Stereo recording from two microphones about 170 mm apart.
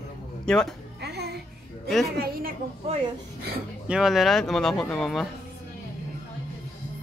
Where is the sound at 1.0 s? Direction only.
75° right (ahead or behind).